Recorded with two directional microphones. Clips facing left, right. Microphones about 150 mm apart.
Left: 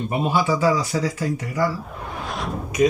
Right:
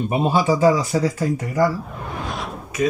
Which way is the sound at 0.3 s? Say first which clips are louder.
Right 2 dB; 40° right (ahead or behind).